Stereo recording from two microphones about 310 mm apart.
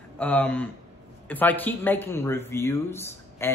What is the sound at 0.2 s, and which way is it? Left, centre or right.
Speech, centre.